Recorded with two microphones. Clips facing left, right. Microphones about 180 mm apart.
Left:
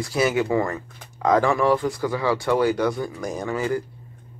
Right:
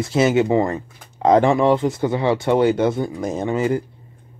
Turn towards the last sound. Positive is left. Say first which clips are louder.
# right 5 dB
turn(degrees=-20)  # may be behind; listen again after turning